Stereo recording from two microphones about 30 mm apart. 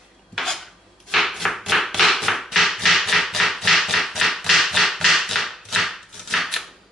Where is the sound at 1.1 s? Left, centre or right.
Centre.